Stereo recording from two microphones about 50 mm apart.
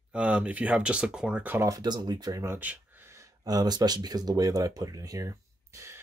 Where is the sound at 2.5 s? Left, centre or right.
Right.